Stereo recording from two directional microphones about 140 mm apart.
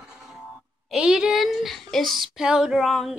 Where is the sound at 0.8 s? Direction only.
5° right (ahead or behind).